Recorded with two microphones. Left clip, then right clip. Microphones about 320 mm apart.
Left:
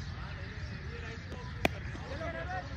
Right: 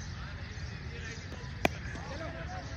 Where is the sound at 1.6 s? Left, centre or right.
Centre.